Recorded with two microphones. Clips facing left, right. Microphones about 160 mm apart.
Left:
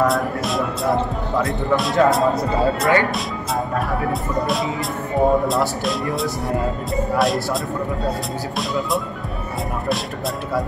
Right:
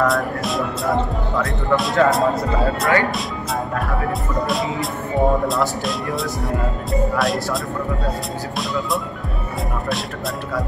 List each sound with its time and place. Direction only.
0.0 s speech: centre (ahead or behind)
4.5 s speech: centre (ahead or behind)